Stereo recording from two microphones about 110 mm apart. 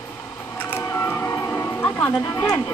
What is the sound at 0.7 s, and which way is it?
Music, 25° left (ahead or behind).